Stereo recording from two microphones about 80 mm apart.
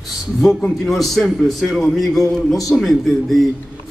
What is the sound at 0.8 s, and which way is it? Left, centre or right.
A man's voice, centre.